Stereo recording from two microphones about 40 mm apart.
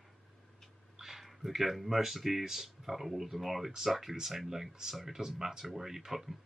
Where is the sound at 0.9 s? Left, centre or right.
Centre.